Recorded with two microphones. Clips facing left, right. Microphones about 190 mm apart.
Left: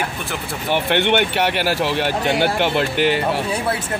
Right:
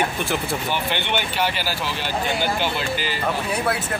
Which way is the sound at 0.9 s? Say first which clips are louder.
Left 7 dB; 65° left (ahead or behind).